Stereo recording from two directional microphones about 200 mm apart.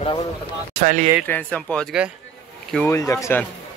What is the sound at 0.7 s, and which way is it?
Speech, 40° right (ahead or behind).